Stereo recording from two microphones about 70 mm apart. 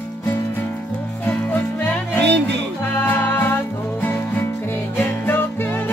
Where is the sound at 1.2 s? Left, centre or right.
Left.